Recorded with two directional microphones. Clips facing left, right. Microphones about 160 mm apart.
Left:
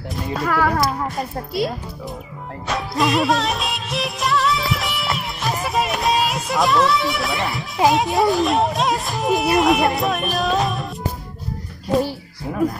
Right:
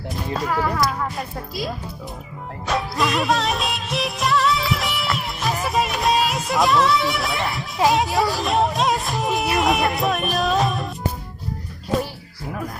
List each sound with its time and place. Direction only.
0.5 s speech: 65° left (ahead or behind)
2.6 s music of bollywood: centre (ahead or behind)
9.6 s music: centre (ahead or behind)